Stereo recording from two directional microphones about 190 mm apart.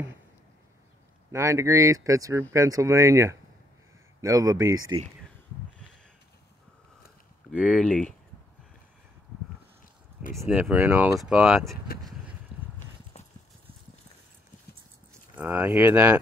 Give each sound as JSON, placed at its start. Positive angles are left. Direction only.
{"t": 1.3, "sound": "speech", "side_deg": -15}
{"t": 7.6, "sound": "speech", "side_deg": 5}
{"t": 10.4, "sound": "speech", "side_deg": -10}
{"t": 15.3, "sound": "speech", "side_deg": -10}